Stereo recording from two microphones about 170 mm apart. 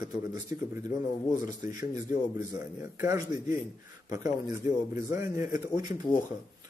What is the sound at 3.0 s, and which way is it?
A man's voice, 15° right (ahead or behind).